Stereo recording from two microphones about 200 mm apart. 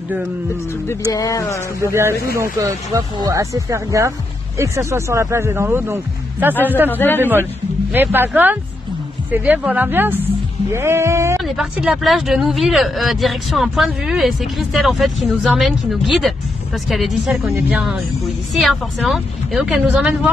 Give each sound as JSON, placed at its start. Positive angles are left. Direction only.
{"t": 1.1, "sound": "speech", "side_deg": 15}
{"t": 1.8, "sound": "speech", "side_deg": -15}
{"t": 6.5, "sound": "speech", "side_deg": 10}
{"t": 7.9, "sound": "speech", "side_deg": -10}
{"t": 11.4, "sound": "speech", "side_deg": 0}